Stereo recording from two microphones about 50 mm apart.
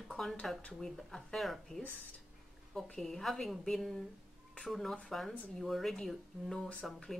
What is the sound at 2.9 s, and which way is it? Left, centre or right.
Speech, centre.